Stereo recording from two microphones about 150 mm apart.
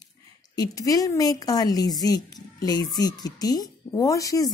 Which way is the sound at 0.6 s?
25° left (ahead or behind).